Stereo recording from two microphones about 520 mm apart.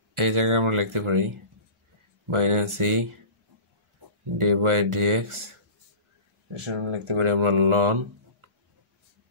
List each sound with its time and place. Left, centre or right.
0.1 s speech: right
2.3 s speech: right
4.4 s speech: right
6.6 s speech: right